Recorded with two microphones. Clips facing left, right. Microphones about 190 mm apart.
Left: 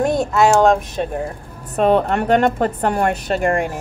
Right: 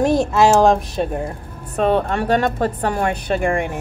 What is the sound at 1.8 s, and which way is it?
A woman's voice, 50° left (ahead or behind).